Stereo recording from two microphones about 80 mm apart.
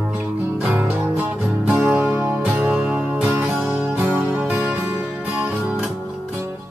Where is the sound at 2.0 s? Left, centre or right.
Right.